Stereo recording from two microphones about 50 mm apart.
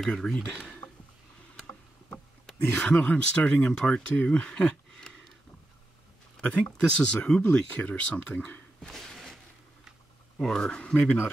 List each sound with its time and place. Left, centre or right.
0.0 s speech: centre
2.7 s speech: left
3.6 s speech: centre
6.4 s speech: left
8.8 s a sound: centre
10.4 s speech: centre